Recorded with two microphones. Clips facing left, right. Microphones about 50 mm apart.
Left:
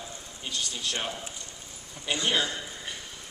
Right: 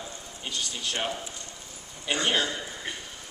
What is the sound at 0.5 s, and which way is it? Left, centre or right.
Speech, right.